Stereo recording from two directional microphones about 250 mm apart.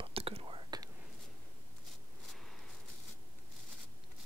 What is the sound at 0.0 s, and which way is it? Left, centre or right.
Whispering, right.